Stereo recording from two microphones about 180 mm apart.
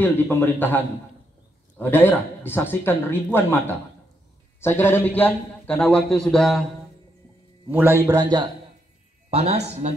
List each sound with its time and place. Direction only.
0.0 s a man's voice: 10° left (ahead or behind)
7.7 s a man's voice: 10° right (ahead or behind)
9.3 s speech: 35° right (ahead or behind)